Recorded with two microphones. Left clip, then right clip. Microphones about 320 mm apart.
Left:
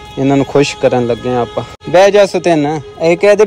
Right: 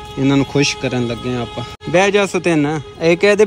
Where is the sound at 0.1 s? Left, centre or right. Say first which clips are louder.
Left 5 dB; centre.